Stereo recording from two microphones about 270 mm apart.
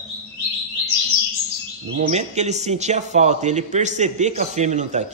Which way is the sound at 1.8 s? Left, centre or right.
Right.